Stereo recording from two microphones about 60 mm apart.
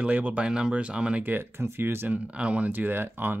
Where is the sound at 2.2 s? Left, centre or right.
Centre.